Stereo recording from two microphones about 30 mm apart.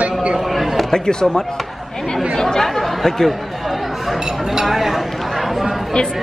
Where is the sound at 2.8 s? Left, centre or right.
Centre.